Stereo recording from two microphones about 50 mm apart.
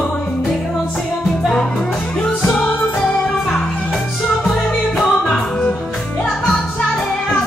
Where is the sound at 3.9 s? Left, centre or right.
Centre.